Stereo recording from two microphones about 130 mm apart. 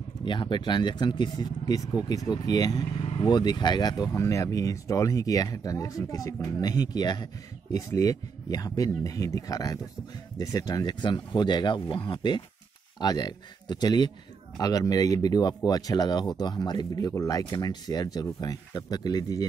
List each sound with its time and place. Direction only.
0.2 s speech: 35° left (ahead or behind)
3.0 s speech: 45° left (ahead or behind)